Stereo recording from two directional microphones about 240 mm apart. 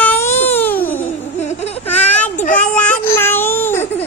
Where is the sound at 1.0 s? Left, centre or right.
Left.